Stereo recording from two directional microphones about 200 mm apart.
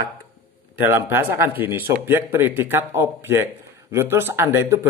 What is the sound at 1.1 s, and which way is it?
Speech, 10° right (ahead or behind).